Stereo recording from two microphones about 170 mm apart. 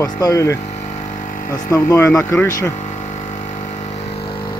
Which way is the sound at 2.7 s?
45° left (ahead or behind).